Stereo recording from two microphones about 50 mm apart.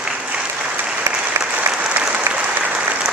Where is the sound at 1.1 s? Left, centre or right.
Right.